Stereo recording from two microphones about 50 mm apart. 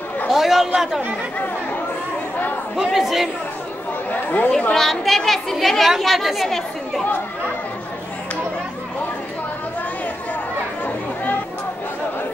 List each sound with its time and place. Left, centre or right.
0.3 s speech: centre
2.7 s speech: centre
4.1 s speech: left
4.5 s speech: centre
4.7 s speech: centre